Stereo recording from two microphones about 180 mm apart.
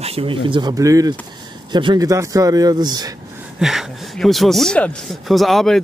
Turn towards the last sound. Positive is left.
turn(degrees=0)  # may be behind; listen again after turning